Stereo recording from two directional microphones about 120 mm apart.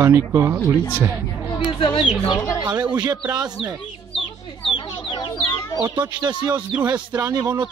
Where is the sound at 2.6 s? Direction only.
35° right (ahead or behind).